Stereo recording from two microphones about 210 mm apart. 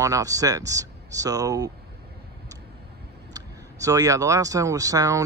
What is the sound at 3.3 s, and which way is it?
Speech, 15° right (ahead or behind).